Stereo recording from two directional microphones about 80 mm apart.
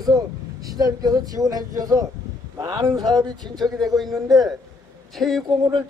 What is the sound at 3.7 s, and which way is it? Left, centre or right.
Speech, centre.